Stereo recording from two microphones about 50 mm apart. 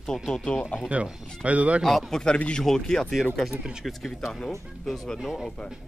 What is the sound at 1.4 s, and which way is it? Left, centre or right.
Speech, right.